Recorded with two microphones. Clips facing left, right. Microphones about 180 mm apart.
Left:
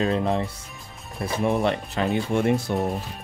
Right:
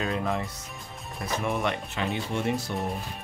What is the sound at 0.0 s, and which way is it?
Speech, 30° left (ahead or behind).